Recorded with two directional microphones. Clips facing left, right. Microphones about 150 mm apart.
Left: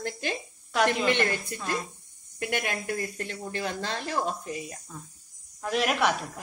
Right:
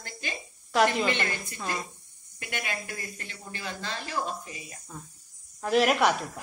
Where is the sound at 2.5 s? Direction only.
60° left (ahead or behind).